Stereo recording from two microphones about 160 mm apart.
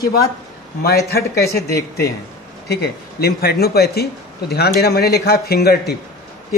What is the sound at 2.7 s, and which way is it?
A man's voice, 75° left (ahead or behind).